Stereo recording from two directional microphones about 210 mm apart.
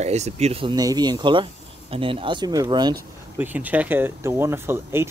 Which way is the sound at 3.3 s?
10° right (ahead or behind).